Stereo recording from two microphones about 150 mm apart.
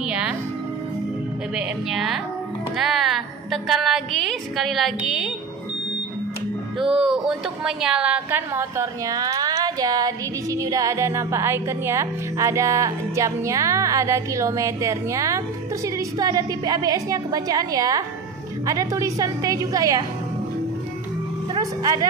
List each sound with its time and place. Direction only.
0.0 s music: 5° right (ahead or behind)
1.5 s a woman's voice: centre (ahead or behind)
7.0 s a woman's voice: 5° right (ahead or behind); by 20.1 s 25° right (ahead or behind)
21.5 s speech: 25° right (ahead or behind)